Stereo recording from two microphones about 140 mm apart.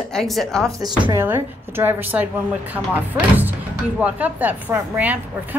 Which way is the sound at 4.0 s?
10° right (ahead or behind).